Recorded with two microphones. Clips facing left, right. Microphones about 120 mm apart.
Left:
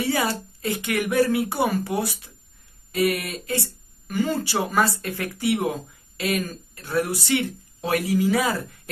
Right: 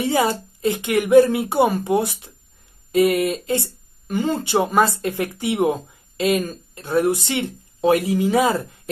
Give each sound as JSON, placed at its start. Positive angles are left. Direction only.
{"t": 0.0, "sound": "speech", "side_deg": -20}